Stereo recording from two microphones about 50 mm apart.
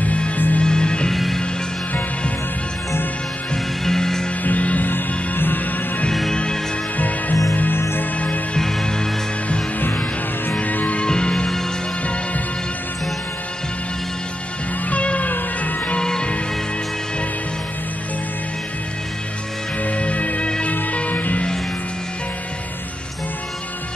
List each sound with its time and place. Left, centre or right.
0.0 s music: left
0.7 s music: centre
1.1 s music: centre
3.8 s music: centre
4.4 s music: left
6.3 s music: centre
7.0 s music: left
8.5 s music: centre
10.5 s music: left
11.0 s music: centre
14.9 s music: left
16.0 s music: centre
19.8 s music: left